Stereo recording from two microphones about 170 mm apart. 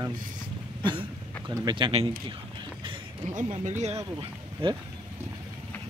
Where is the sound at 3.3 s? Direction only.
45° right (ahead or behind).